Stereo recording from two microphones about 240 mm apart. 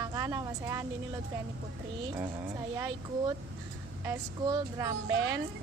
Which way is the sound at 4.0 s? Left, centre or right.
Centre.